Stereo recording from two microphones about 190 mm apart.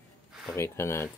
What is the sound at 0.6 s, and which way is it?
Speech, 15° left (ahead or behind).